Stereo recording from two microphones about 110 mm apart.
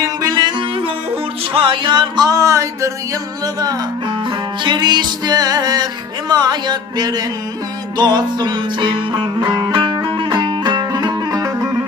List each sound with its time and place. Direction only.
0.2 s music: 45° right (ahead or behind)
4.6 s music: 40° right (ahead or behind)